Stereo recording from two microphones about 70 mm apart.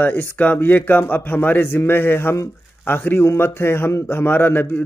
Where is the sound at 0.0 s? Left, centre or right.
Left.